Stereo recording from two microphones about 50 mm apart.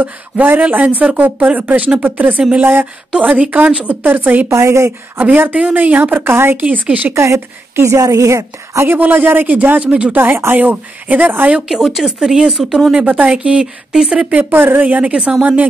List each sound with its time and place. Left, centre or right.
0.0 s a woman's voice: right
3.2 s speech: right
4.5 s a woman's voice: right
5.5 s speech: right
5.9 s a woman's voice: right
6.6 s speech: right
7.2 s a woman's voice: right
8.8 s speech: right
10.1 s speech: right
11.6 s speech: centre
13.0 s speech: right
13.3 s speech: centre
14.5 s a woman's voice: right
14.8 s speech: right